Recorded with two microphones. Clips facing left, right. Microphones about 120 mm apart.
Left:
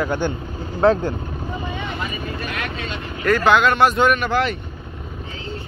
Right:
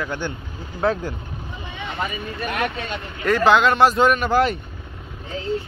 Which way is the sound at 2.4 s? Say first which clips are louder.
Right 3 dB; 25° right (ahead or behind).